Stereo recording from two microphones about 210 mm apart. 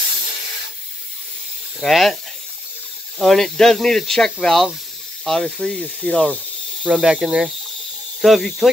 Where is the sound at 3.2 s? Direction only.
Centre (ahead or behind).